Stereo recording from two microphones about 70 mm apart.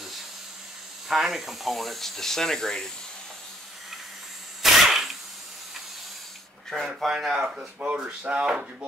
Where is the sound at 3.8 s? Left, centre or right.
Centre.